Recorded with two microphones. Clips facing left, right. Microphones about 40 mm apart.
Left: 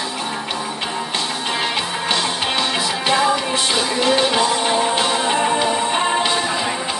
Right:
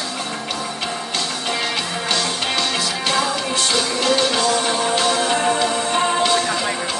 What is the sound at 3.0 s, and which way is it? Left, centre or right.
Music, centre.